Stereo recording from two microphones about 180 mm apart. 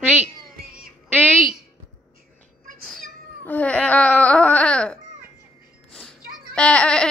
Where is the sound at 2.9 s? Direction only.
5° left (ahead or behind).